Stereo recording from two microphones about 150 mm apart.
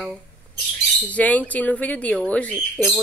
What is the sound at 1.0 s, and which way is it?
Speech, 10° left (ahead or behind).